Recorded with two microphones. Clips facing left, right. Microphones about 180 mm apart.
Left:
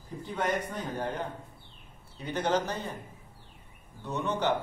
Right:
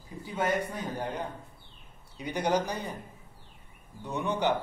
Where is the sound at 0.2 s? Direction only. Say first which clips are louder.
Right 2 dB; 10° right (ahead or behind).